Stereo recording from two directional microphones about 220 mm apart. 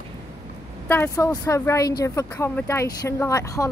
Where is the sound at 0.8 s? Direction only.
10° left (ahead or behind).